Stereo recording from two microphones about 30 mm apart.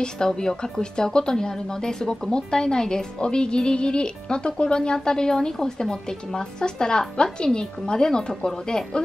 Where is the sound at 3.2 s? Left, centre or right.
Left.